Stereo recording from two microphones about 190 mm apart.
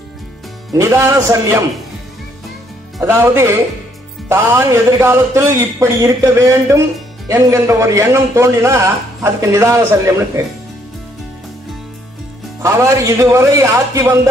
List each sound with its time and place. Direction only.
0.7 s a man's voice: 15° right (ahead or behind)
3.0 s a man's voice: 15° right (ahead or behind)
12.6 s a man's voice: 15° right (ahead or behind)